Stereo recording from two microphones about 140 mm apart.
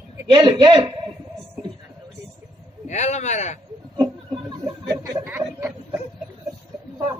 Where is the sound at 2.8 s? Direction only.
55° left (ahead or behind).